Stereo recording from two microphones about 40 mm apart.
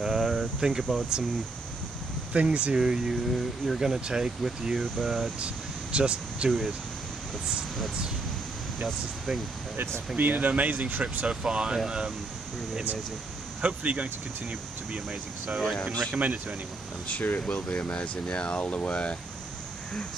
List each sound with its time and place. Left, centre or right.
0.0 s a sound: centre
0.6 s speech: centre
2.3 s speech: right
2.7 s speech: centre
3.3 s speech: centre
5.4 s speech: right
8.8 s speech: centre
10.1 s speech: right
11.2 s speech: right
13.6 s speech: right
15.6 s speech: centre
16.2 s speech: right
17.1 s speech: left
17.7 s speech: left